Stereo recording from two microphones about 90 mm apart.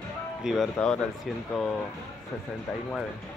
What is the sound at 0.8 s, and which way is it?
Speech, 10° left (ahead or behind).